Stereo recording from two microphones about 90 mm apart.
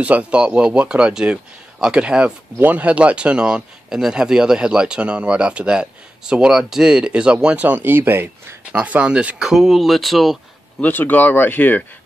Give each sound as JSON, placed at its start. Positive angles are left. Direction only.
{"t": 0.0, "sound": "speech", "side_deg": -15}
{"t": 9.5, "sound": "speech", "side_deg": 0}
{"t": 10.8, "sound": "speech", "side_deg": 20}